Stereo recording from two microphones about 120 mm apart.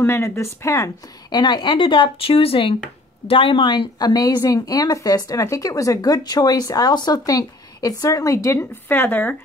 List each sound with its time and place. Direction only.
0.0 s speech: 20° left (ahead or behind)
1.3 s a woman's voice: 40° left (ahead or behind); by 9.4 s 15° left (ahead or behind)